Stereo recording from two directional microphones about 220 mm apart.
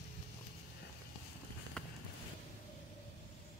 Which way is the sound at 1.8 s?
5° left (ahead or behind).